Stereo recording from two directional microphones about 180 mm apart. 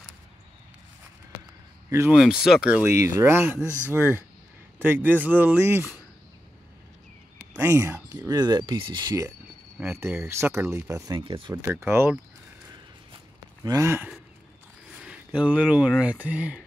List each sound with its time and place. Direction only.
1.9 s speech: 15° right (ahead or behind)
2.1 s speech: centre (ahead or behind)
7.5 s speech: 15° right (ahead or behind)
11.5 s speech: 15° right (ahead or behind)
13.7 s speech: 15° right (ahead or behind)